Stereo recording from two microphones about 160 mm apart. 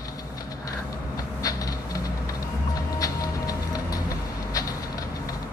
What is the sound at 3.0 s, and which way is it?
Music, 20° left (ahead or behind).